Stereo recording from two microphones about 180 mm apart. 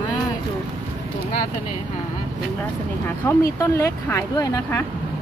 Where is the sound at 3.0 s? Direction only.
15° left (ahead or behind).